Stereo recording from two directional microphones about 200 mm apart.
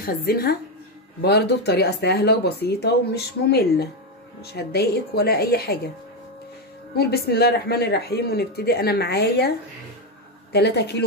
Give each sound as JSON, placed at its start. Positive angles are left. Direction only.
{"t": 0.0, "sound": "speech", "side_deg": 50}
{"t": 7.0, "sound": "speech", "side_deg": 50}
{"t": 10.5, "sound": "speech", "side_deg": 55}